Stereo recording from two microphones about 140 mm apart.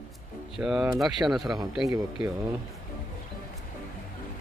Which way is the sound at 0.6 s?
5° right (ahead or behind).